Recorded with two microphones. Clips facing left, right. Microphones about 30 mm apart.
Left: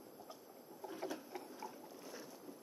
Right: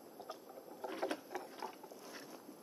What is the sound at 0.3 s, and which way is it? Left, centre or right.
Boat, right.